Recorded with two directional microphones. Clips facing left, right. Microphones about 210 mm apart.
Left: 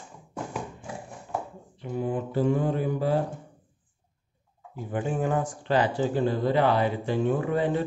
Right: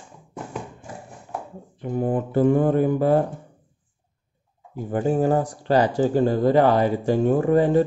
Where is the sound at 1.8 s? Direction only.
50° right (ahead or behind).